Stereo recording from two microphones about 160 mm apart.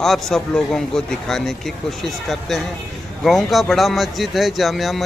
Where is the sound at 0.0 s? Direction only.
5° left (ahead or behind).